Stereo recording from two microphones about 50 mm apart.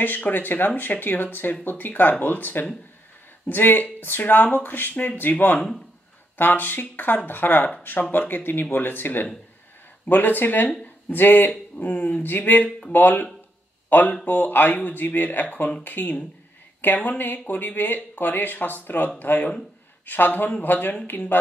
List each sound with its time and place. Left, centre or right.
0.0 s speech: left
6.3 s speech: left